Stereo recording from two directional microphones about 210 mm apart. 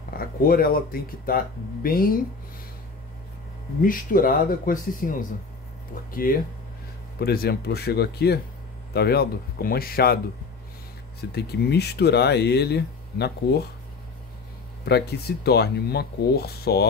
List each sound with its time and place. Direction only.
0.2 s speech: 45° left (ahead or behind)
3.8 s speech: 40° left (ahead or behind)
11.3 s speech: 50° left (ahead or behind)
14.9 s speech: 50° left (ahead or behind)